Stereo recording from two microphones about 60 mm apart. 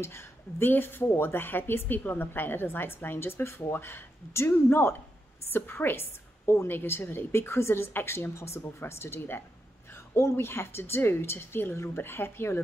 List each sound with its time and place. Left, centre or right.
0.0 s a woman's voice: left